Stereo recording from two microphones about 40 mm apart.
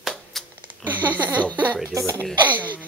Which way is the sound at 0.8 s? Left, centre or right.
Right.